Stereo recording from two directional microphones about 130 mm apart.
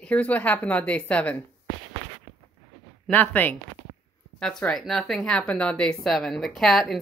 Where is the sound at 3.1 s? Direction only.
15° left (ahead or behind).